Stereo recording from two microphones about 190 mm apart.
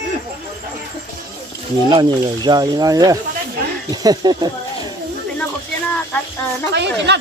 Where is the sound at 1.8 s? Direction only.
25° right (ahead or behind).